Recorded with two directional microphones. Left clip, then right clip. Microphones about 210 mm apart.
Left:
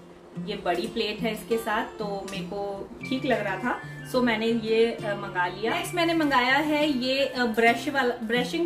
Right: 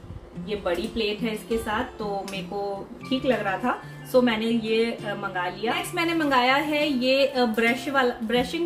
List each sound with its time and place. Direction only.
0.7 s speech: centre (ahead or behind)
3.1 s speech: centre (ahead or behind)